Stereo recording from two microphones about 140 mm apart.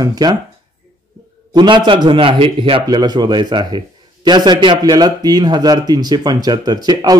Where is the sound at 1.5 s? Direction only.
35° right (ahead or behind).